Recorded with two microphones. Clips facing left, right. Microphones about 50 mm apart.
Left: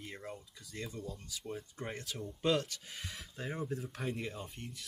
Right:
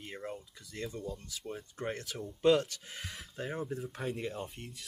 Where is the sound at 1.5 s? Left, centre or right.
Right.